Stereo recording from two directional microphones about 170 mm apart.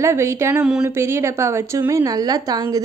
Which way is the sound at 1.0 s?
15° right (ahead or behind).